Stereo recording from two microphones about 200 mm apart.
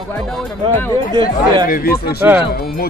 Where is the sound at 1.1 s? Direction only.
20° right (ahead or behind).